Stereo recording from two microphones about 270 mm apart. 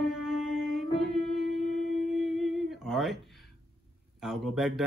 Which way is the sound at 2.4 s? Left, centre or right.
Centre.